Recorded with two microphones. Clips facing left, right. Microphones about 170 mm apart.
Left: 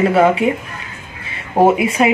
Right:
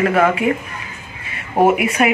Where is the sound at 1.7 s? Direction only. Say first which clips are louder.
Left 1 dB; 25° left (ahead or behind).